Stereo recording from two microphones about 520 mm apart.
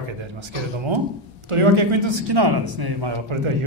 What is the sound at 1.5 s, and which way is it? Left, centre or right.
Speech, right.